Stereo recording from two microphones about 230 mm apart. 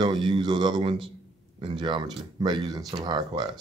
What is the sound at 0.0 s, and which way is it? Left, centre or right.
Speech, centre.